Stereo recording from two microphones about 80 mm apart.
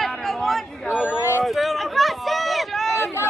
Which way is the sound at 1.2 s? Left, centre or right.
Left.